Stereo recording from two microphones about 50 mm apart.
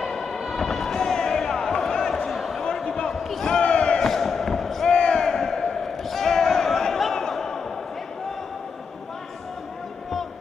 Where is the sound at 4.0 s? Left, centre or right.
Centre.